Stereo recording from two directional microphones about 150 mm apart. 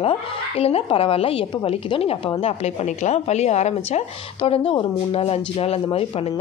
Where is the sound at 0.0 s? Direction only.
40° left (ahead or behind).